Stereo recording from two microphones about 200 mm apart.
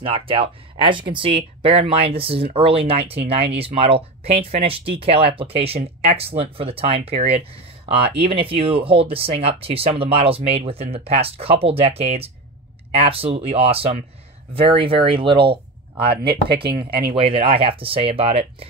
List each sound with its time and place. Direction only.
0.0 s speech: 25° right (ahead or behind)